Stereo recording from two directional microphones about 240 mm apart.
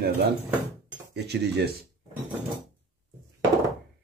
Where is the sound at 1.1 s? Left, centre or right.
Right.